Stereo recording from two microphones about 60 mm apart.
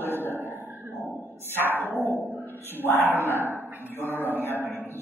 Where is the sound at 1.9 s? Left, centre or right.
Right.